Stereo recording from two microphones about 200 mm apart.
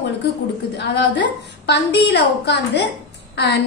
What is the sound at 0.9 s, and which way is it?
A woman's voice, 60° left (ahead or behind).